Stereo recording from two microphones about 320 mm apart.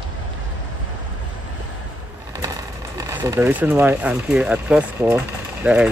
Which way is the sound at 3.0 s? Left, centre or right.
Centre.